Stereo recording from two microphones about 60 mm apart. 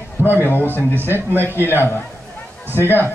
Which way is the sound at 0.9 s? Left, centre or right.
Right.